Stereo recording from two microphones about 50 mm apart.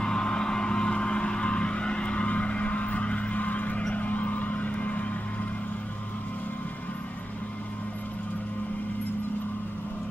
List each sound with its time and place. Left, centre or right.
0.0 s vehicle: centre